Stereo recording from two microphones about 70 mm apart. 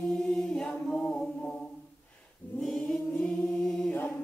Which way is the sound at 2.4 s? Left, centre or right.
Left.